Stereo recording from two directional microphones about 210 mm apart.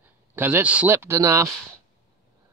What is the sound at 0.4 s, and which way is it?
Speech, 10° right (ahead or behind).